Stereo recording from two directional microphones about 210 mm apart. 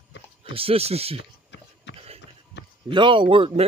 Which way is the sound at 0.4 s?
25° right (ahead or behind).